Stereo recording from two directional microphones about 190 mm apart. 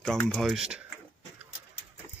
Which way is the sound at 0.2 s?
5° left (ahead or behind).